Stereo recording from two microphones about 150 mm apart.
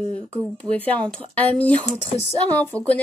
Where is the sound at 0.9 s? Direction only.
10° left (ahead or behind).